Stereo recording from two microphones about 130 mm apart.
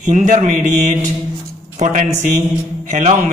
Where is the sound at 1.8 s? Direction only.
70° right (ahead or behind).